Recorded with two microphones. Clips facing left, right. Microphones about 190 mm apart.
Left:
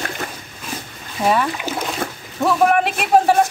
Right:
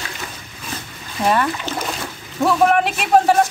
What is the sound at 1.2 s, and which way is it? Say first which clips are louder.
Speech: even; centre (ahead or behind).